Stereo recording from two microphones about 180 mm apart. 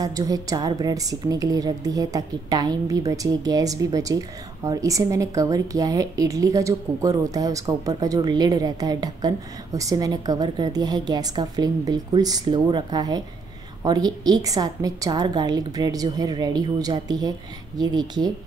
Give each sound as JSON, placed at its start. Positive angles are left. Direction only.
{"t": 0.0, "sound": "a woman's voice", "side_deg": -20}